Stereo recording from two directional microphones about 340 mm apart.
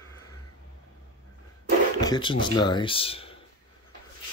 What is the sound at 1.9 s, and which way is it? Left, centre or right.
Speech, centre.